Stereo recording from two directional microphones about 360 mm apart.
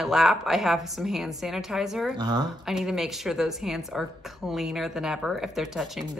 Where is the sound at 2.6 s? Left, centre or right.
Centre.